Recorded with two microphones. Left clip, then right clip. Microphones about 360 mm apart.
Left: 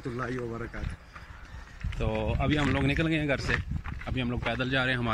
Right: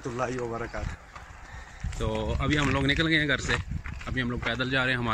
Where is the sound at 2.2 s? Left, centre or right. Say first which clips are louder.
Right 1 dB; centre.